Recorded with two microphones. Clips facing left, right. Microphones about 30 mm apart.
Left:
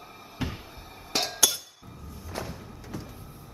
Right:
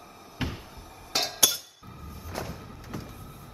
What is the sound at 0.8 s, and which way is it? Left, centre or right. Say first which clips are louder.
Music: left 1 dB; left.